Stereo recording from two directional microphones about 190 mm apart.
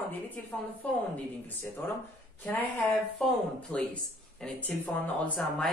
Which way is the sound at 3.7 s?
5° left (ahead or behind).